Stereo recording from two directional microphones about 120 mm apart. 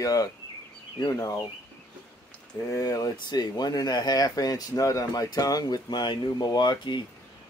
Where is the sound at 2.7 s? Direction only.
30° left (ahead or behind).